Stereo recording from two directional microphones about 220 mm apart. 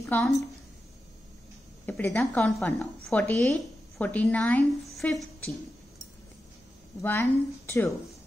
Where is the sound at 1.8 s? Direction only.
10° left (ahead or behind).